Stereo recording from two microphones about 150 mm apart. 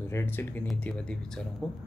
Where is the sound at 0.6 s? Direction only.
5° left (ahead or behind).